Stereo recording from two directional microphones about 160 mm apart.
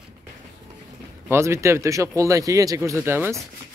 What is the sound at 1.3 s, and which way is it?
Speech, 15° right (ahead or behind).